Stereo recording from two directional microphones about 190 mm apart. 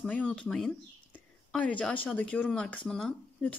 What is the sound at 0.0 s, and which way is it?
A woman's voice, 5° left (ahead or behind).